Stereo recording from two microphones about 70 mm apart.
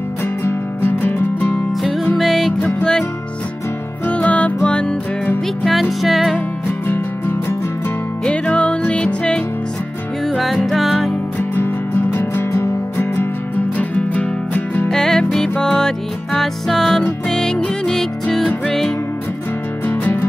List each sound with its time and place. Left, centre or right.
0.4 s music: left
1.8 s music: centre
2.6 s music: centre
4.1 s music: left
5.7 s music: centre
6.9 s music: left
8.3 s music: centre
10.2 s music: centre
11.3 s music: left
13.7 s music: left
14.9 s music: centre
19.9 s music: left